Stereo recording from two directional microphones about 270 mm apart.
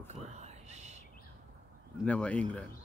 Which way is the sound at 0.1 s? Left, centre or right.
Right.